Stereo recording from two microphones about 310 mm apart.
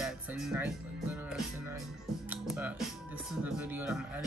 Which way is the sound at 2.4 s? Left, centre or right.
Centre.